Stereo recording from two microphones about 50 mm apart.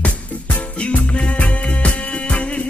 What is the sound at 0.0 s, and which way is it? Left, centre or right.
Music, left.